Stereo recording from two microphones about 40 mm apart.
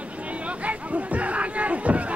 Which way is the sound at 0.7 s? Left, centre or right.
Right.